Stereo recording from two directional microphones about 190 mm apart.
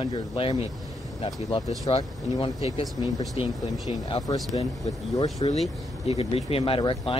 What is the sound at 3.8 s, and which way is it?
Speech, 25° left (ahead or behind).